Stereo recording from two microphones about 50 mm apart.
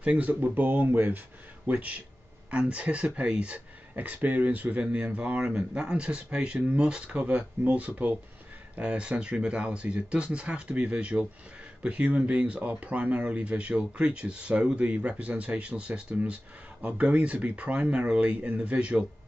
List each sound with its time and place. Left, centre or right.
0.0 s speech: right
0.3 s speech: right
1.7 s speech: right
3.9 s speech: right